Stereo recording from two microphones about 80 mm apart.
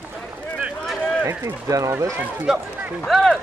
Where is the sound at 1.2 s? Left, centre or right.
Right.